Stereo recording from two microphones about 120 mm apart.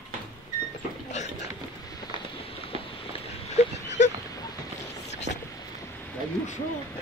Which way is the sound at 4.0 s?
90° left.